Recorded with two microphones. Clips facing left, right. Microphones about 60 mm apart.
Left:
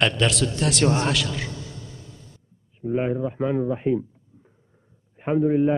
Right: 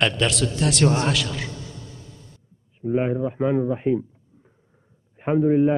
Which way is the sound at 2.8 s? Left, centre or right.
Centre.